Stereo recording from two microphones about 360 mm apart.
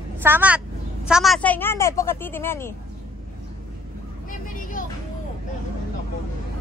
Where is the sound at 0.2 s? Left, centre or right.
Centre.